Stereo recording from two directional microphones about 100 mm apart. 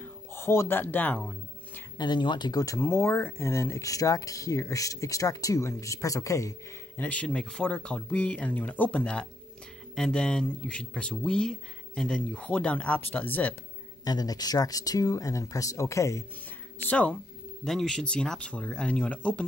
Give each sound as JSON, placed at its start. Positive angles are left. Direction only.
{"t": 0.0, "sound": "speech", "side_deg": 25}
{"t": 2.0, "sound": "speech", "side_deg": 50}
{"t": 2.8, "sound": "speech", "side_deg": 25}
{"t": 7.0, "sound": "speech", "side_deg": 15}
{"t": 14.0, "sound": "speech", "side_deg": 40}
{"t": 16.8, "sound": "speech", "side_deg": 15}